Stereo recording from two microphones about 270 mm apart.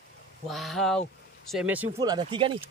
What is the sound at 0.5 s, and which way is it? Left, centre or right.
Speech, centre.